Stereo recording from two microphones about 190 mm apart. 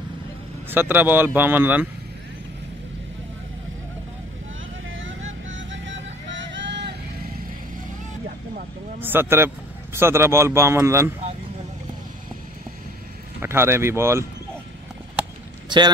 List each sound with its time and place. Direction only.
0.7 s speech: 10° right (ahead or behind)
4.9 s music: 90° right; by 6.9 s 65° right (ahead or behind)
9.0 s speech: 10° right (ahead or behind)
13.4 s speech: 15° right (ahead or behind)
15.7 s speech: 25° right (ahead or behind)